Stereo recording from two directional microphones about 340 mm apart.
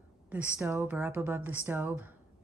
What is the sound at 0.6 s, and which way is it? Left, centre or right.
Speech, centre.